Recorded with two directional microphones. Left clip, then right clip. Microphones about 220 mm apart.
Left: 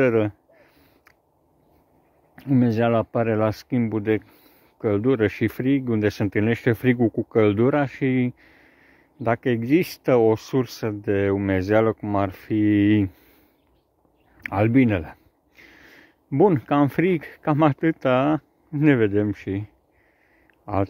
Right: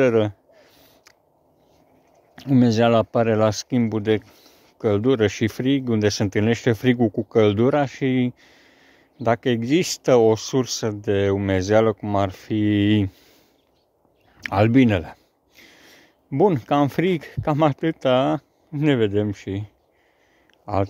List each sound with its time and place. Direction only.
0.0 s a sound: 10° right (ahead or behind)
2.3 s speech: 20° right (ahead or behind)
14.4 s speech: 20° right (ahead or behind)
15.5 s speech: 5° right (ahead or behind)